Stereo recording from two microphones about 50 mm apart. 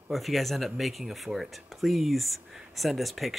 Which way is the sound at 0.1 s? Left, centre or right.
Centre.